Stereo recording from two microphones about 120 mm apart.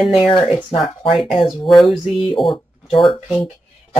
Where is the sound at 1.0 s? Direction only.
50° left (ahead or behind).